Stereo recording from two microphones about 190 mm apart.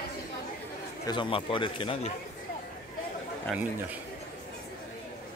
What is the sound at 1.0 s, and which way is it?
Speech, 25° left (ahead or behind).